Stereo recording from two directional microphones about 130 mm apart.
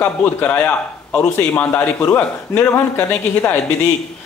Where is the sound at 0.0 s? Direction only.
15° left (ahead or behind).